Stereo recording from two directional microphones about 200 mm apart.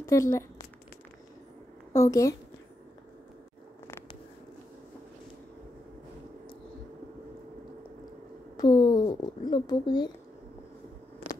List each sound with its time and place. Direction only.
0.0 s speech: 15° left (ahead or behind)
1.9 s a woman's voice: 15° left (ahead or behind)
8.5 s a sound: 20° left (ahead or behind)